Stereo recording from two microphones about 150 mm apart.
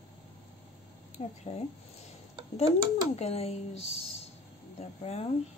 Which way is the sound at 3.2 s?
45° left (ahead or behind).